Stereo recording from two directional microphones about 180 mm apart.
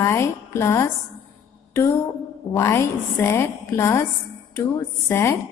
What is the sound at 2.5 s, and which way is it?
A woman's voice, 15° left (ahead or behind).